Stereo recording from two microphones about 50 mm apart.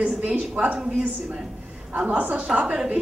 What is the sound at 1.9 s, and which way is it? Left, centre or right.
A woman's voice, right.